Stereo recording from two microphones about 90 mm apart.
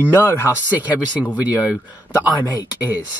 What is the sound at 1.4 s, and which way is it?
Speech, 15° right (ahead or behind).